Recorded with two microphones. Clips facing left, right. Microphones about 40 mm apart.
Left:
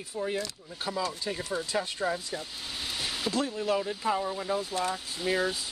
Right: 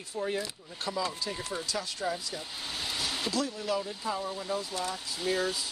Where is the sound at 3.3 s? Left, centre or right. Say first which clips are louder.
Left 4 dB; left.